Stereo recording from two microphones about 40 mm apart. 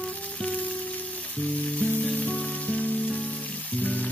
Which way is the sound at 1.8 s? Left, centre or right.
Left.